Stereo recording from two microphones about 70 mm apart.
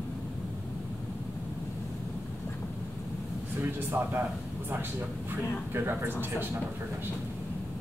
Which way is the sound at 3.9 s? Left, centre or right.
Right.